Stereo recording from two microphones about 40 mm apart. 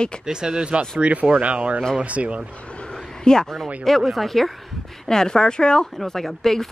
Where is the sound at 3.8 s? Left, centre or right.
Centre.